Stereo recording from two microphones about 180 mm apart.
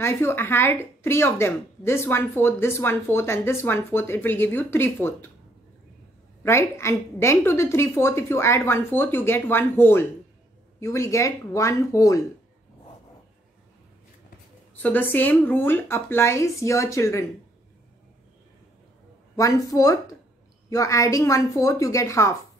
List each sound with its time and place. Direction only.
0.0 s a woman's voice: 15° left (ahead or behind)
6.4 s a woman's voice: 15° left (ahead or behind)
14.8 s a woman's voice: 10° left (ahead or behind)
19.3 s a woman's voice: 20° left (ahead or behind)